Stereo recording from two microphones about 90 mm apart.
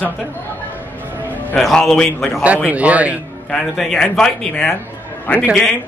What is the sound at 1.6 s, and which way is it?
Speech, 5° left (ahead or behind).